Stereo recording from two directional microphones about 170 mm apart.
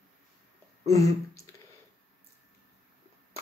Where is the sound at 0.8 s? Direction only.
20° left (ahead or behind).